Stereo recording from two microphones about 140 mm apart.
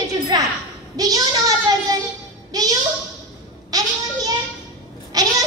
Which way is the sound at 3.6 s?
25° right (ahead or behind).